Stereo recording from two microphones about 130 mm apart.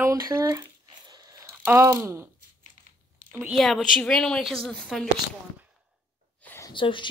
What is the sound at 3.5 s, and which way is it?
A woman's voice, centre (ahead or behind).